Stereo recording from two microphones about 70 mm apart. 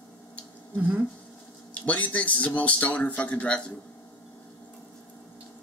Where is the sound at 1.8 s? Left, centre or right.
Left.